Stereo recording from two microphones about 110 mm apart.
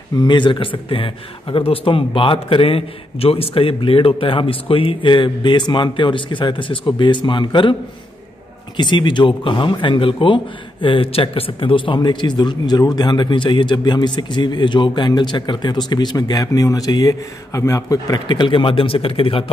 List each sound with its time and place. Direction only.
0.1 s speech: 45° left (ahead or behind)
8.7 s speech: 45° left (ahead or behind)